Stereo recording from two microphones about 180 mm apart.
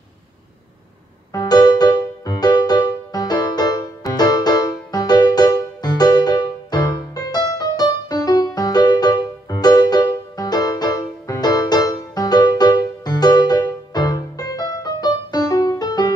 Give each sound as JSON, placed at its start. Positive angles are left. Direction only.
{"t": 1.3, "sound": "music", "side_deg": 20}